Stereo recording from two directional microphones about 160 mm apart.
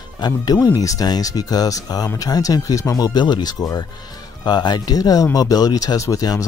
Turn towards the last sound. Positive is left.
turn(degrees=20)  # may be behind; listen again after turning